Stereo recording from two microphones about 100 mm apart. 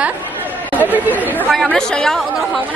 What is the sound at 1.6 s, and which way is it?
Speech, 5° left (ahead or behind).